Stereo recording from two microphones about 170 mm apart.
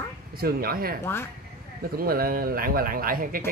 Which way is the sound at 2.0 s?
60° right (ahead or behind).